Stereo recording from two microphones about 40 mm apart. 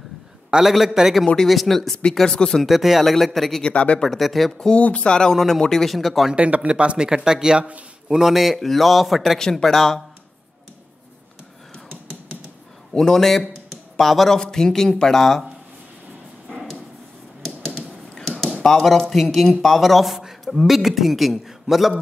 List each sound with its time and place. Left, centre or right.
0.5 s a man's voice: centre
1.2 s a man's voice: centre
1.5 s a man's voice: centre
2.2 s a man's voice: centre
2.6 s a man's voice: centre
3.6 s speech: left
4.1 s a man's voice: centre
4.7 s speech: left
5.6 s a man's voice: centre
6.3 s a man's voice: right; by 9.4 s centre
9.4 s a man's voice: centre
12.9 s a man's voice: centre
18.6 s a man's voice: centre